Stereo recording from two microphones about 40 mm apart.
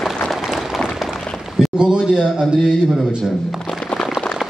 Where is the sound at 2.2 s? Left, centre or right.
Centre.